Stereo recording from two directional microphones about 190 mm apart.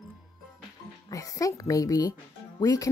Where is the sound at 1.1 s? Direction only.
20° left (ahead or behind).